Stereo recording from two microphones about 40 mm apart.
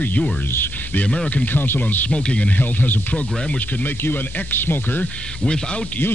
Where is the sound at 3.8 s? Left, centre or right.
Left.